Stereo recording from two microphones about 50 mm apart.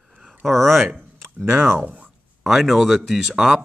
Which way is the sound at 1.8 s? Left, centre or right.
Right.